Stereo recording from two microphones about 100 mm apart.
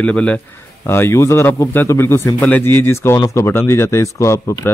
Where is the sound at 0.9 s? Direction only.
25° left (ahead or behind).